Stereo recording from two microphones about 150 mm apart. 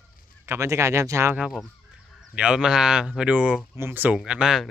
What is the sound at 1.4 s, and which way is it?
Speech, 5° right (ahead or behind).